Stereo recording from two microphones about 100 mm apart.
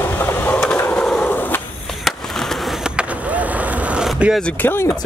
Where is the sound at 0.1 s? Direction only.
20° left (ahead or behind).